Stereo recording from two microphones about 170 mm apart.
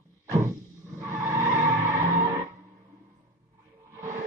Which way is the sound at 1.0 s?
15° right (ahead or behind).